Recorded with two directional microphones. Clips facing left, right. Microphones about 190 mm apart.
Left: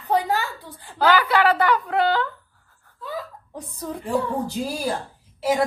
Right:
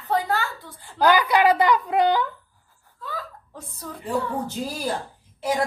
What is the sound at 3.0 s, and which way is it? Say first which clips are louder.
Hiccup: left 3 dB; 15° left (ahead or behind).